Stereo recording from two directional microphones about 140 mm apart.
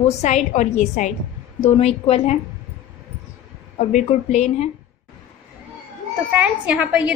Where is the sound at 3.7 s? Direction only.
55° left (ahead or behind).